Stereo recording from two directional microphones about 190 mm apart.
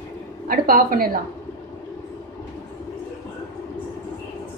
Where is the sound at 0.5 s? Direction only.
50° right (ahead or behind).